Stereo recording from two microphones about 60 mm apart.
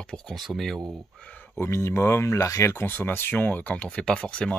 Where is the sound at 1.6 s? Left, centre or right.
Left.